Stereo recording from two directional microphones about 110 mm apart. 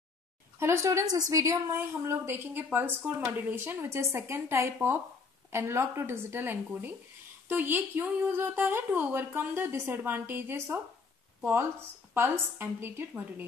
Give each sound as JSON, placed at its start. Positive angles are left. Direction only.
{"t": 0.6, "sound": "a woman's voice", "side_deg": -25}
{"t": 12.1, "sound": "a woman's voice", "side_deg": -20}